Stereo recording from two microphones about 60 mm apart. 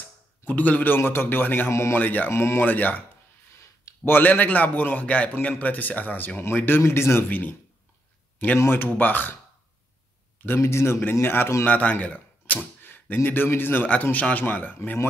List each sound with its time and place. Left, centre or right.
0.5 s a man's voice: left
0.9 s speech: left
1.7 s a man's voice: left
2.0 s speech: left
4.0 s a man's voice: left
7.2 s a man's voice: left
8.5 s speech: left
10.6 s a man's voice: left
11.6 s speech: left
12.8 s a sound: left
13.5 s speech: left